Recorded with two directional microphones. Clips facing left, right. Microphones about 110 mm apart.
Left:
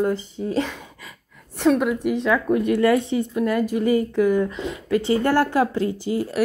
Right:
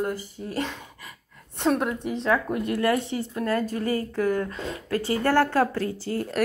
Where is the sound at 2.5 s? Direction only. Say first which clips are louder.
Left 6 dB; 20° left (ahead or behind).